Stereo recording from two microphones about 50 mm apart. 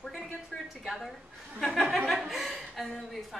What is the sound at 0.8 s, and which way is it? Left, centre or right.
A woman's voice, centre.